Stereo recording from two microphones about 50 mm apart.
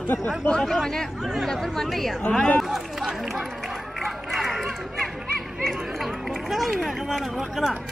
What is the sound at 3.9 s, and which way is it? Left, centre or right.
Chatter, centre.